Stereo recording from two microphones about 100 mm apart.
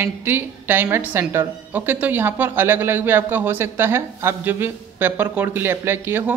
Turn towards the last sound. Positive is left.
turn(degrees=-20)  # may be behind; listen again after turning